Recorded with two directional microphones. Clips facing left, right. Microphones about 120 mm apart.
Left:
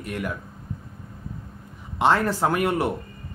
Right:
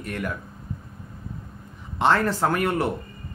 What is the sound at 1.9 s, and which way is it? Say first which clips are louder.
Speech: even; 10° left (ahead or behind).